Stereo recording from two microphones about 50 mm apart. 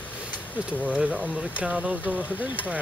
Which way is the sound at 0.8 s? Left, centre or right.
Right.